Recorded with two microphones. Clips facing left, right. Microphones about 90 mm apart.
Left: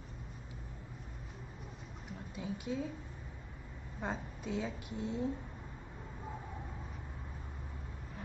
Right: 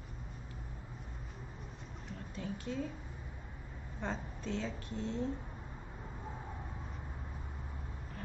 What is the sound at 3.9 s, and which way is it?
A woman's voice, 10° left (ahead or behind).